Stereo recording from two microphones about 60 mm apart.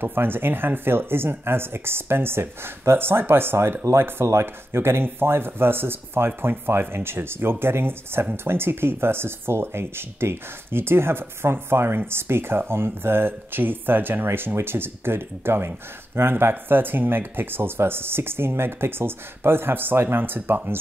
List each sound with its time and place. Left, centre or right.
0.0 s speech: right